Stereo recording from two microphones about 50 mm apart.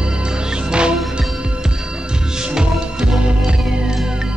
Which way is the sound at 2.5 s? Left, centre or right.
Centre.